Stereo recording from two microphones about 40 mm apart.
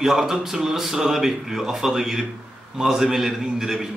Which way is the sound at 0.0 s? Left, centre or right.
Centre.